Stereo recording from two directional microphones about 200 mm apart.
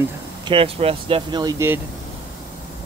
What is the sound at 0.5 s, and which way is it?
Speech, 30° right (ahead or behind).